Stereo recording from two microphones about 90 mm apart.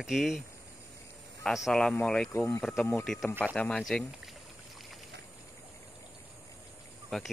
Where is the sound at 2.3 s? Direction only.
30° left (ahead or behind).